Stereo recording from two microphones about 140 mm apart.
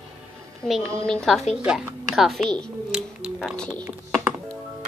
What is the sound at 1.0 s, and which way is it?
Speech, 5° left (ahead or behind).